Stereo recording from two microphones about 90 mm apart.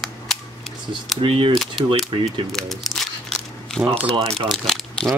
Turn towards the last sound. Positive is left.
turn(degrees=5)  # may be behind; listen again after turning